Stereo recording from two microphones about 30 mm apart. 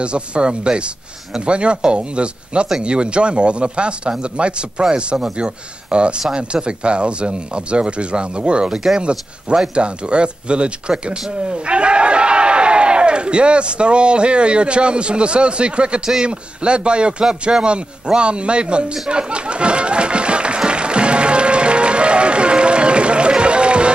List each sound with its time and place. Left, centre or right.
0.0 s speech: right
17.2 s speech: right
17.6 s speech: right
19.0 s applause: right